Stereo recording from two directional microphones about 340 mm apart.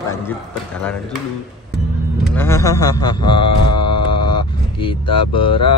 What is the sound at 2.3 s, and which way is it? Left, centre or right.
Speech, centre.